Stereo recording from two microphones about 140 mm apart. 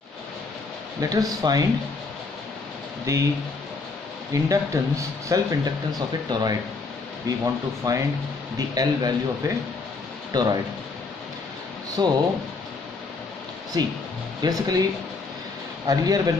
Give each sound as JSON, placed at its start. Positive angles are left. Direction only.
{"t": 1.0, "sound": "speech", "side_deg": -25}
{"t": 3.1, "sound": "speech", "side_deg": -20}
{"t": 4.3, "sound": "speech", "side_deg": -25}
{"t": 12.0, "sound": "speech", "side_deg": -30}
{"t": 13.7, "sound": "speech", "side_deg": -25}
{"t": 15.9, "sound": "speech", "side_deg": -25}